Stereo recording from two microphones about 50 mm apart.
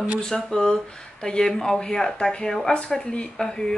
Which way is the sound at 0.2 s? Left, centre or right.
Centre.